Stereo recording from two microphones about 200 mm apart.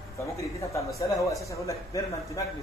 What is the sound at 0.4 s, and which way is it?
Speech, 15° left (ahead or behind).